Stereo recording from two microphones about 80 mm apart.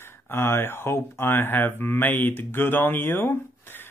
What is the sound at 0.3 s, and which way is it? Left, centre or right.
Speech, left.